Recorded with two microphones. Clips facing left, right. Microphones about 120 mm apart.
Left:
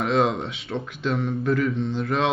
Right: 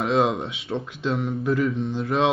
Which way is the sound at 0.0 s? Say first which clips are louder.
Even; 20° right (ahead or behind).